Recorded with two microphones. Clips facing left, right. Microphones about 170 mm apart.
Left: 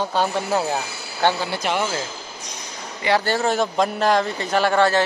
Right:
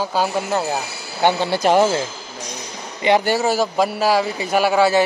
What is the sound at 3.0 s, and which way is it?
A man's voice, 15° right (ahead or behind).